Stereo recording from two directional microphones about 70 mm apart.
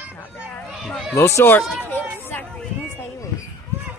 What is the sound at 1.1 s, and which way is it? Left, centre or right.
Speech, left.